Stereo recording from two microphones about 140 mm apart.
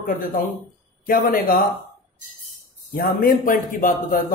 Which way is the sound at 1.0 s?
90° left.